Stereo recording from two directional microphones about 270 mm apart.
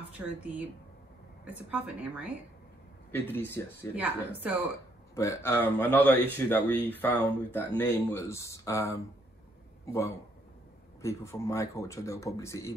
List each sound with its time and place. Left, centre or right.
1.7 s a woman's voice: centre
3.1 s speech: centre
3.9 s speech: centre
5.1 s a man's voice: centre